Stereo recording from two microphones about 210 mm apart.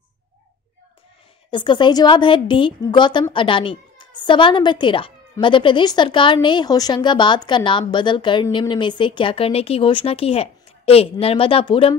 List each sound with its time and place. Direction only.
1.5 s speech: 20° left (ahead or behind)